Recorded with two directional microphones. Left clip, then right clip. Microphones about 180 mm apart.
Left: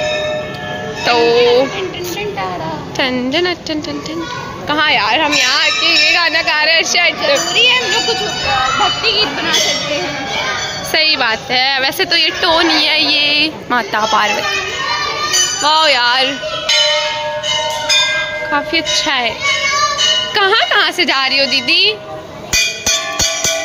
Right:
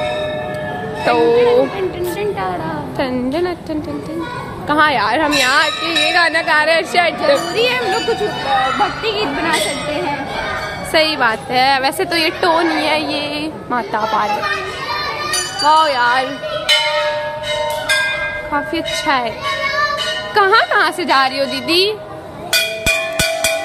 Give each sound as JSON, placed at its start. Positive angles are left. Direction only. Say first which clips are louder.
{"t": 1.0, "sound": "speech", "louder": "left 1 dB", "side_deg": -10}
{"t": 3.0, "sound": "a woman's voice", "louder": "left 4 dB", "side_deg": 0}
{"t": 4.6, "sound": "a woman's voice", "louder": "left 1 dB", "side_deg": -15}
{"t": 7.5, "sound": "a child's voice", "louder": "left 4 dB", "side_deg": -55}
{"t": 10.9, "sound": "a woman's voice", "louder": "left 1 dB", "side_deg": 0}
{"t": 15.6, "sound": "speech", "louder": "right 1 dB", "side_deg": 5}
{"t": 18.5, "sound": "a woman's voice", "louder": "left 6 dB", "side_deg": 0}
{"t": 20.3, "sound": "a woman's voice", "louder": "right 3 dB", "side_deg": -5}